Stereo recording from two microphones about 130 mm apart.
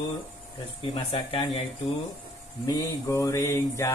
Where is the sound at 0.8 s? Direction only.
45° left (ahead or behind).